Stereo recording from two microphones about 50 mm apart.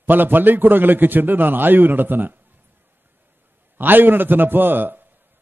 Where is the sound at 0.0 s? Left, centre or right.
Right.